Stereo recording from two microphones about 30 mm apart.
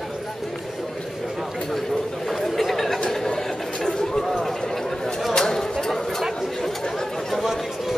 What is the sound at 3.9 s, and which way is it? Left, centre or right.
Chatter, left.